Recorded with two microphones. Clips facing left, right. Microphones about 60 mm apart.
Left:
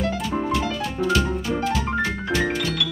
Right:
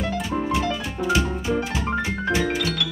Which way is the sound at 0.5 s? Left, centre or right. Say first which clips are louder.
Even; centre.